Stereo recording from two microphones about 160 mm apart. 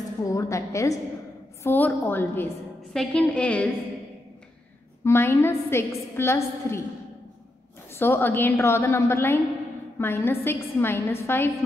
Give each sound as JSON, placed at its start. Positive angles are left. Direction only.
{"t": 0.2, "sound": "a woman's voice", "side_deg": 20}
{"t": 5.0, "sound": "a woman's voice", "side_deg": 15}
{"t": 7.9, "sound": "a woman's voice", "side_deg": 15}